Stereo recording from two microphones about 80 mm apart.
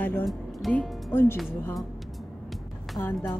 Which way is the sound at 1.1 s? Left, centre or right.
Left.